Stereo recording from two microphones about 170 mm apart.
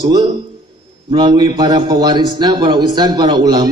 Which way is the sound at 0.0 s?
25° right (ahead or behind).